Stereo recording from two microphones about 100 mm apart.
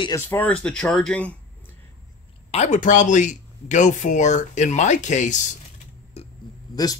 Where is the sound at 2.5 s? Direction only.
90° left.